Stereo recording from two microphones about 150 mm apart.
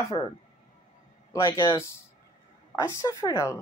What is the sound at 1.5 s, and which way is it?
Speech, 30° left (ahead or behind).